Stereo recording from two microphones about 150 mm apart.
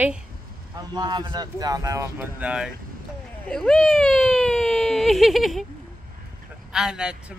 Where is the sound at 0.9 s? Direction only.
30° right (ahead or behind); by 2.7 s 5° right (ahead or behind).